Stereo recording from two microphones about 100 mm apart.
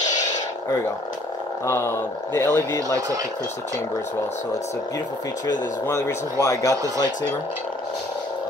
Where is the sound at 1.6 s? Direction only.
25° left (ahead or behind).